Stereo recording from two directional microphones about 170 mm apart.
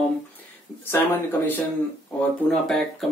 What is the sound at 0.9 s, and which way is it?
Speech, 10° left (ahead or behind).